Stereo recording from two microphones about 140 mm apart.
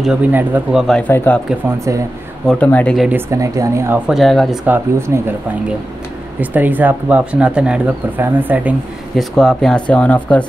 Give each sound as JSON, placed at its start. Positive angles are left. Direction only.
{"t": 0.3, "sound": "speech", "side_deg": -15}
{"t": 0.7, "sound": "speech", "side_deg": 0}
{"t": 1.0, "sound": "speech", "side_deg": 10}
{"t": 2.4, "sound": "speech", "side_deg": 10}
{"t": 3.1, "sound": "speech", "side_deg": -20}
{"t": 4.1, "sound": "speech", "side_deg": 0}
{"t": 4.6, "sound": "speech", "side_deg": -20}
{"t": 6.4, "sound": "speech", "side_deg": -10}
{"t": 9.1, "sound": "speech", "side_deg": 5}